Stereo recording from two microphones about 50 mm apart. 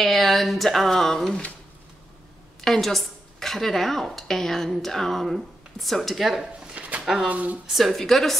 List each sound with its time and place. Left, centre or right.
0.0 s speech: centre
2.6 s speech: centre
6.7 s a sound: right
7.0 s a sound: centre
7.2 s speech: right
7.6 s speech: centre